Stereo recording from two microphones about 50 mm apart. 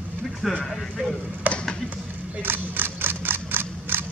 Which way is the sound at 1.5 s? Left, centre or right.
Right.